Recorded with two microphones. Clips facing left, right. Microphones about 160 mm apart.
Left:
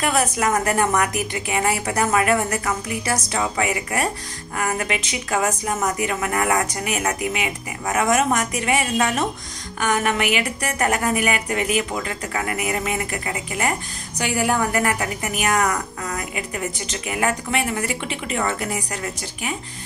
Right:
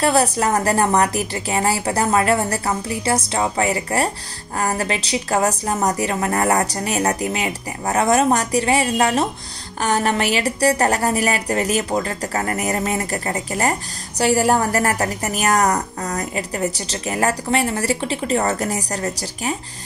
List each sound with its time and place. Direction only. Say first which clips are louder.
0.0 s a woman's voice: right 3 dB; 35° right (ahead or behind)